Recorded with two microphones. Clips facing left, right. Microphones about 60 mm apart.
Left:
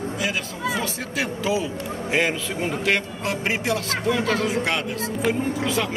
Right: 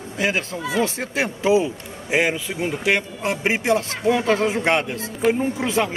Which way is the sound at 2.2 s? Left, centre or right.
Centre.